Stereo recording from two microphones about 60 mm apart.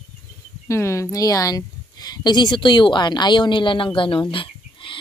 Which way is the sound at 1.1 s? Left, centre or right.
Left.